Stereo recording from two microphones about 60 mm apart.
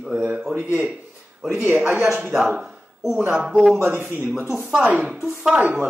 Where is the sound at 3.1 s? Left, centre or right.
Centre.